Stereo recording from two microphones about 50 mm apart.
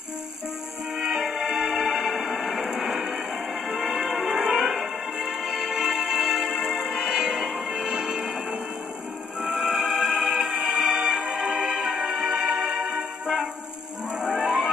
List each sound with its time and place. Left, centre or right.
0.9 s music: centre
3.7 s music: centre
4.6 s music: centre
9.5 s music: centre